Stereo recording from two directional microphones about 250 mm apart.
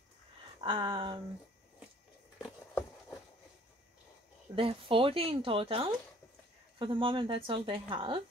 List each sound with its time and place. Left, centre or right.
0.6 s speech: right
2.3 s a sound: centre
4.6 s speech: right